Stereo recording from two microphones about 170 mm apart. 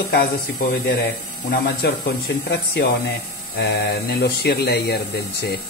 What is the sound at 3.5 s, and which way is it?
Speech, 70° left (ahead or behind).